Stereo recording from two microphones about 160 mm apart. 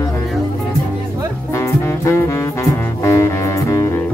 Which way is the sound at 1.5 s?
20° left (ahead or behind).